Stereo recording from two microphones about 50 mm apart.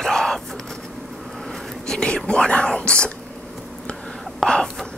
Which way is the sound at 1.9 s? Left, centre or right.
Centre.